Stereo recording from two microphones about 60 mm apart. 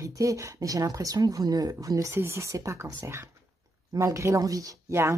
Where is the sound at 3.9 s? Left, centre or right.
Right.